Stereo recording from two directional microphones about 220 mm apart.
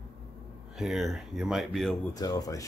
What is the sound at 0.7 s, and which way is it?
Speech, centre (ahead or behind).